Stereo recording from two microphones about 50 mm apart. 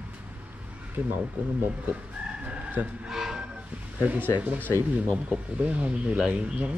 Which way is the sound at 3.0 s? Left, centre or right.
Centre.